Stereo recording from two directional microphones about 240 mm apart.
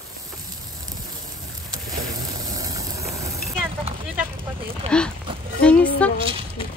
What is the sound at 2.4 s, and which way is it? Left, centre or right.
Sizzle, centre.